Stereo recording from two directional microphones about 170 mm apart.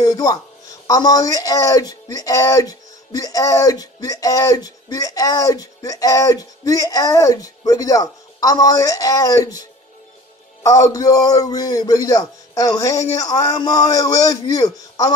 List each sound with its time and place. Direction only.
0.0 s speech: 20° left (ahead or behind)
10.6 s speech: 20° left (ahead or behind)